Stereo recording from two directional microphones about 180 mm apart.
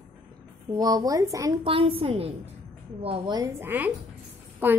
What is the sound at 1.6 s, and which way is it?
A woman's voice, 30° right (ahead or behind).